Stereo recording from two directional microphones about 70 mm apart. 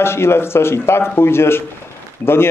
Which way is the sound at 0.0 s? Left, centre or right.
Left.